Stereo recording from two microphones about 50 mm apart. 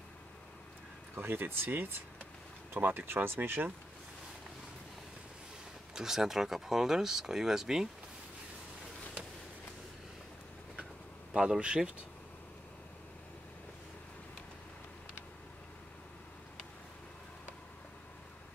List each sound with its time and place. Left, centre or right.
1.1 s speech: right
5.9 s speech: centre
11.3 s speech: centre